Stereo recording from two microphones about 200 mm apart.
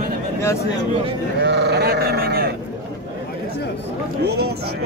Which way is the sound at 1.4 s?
55° right (ahead or behind).